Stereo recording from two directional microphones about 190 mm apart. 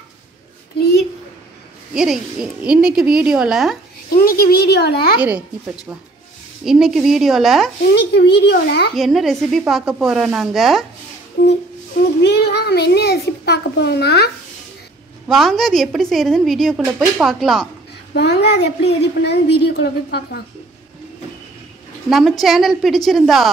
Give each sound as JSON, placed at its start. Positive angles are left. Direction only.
{"t": 2.6, "sound": "speech", "side_deg": -5}
{"t": 4.1, "sound": "speech", "side_deg": 55}
{"t": 6.6, "sound": "speech", "side_deg": -5}
{"t": 7.9, "sound": "speech", "side_deg": 60}
{"t": 8.9, "sound": "speech", "side_deg": 0}
{"t": 11.4, "sound": "speech", "side_deg": 55}
{"t": 15.2, "sound": "speech", "side_deg": 0}
{"t": 18.1, "sound": "speech", "side_deg": 60}
{"t": 22.1, "sound": "speech", "side_deg": 0}